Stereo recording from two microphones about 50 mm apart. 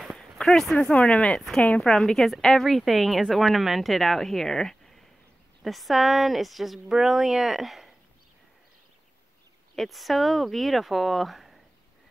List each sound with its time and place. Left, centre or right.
0.1 s a sound: centre
0.9 s speech: left
1.8 s a woman's voice: centre
9.8 s a woman's voice: centre